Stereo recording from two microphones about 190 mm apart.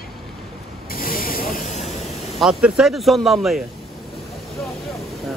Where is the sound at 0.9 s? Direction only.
50° left (ahead or behind).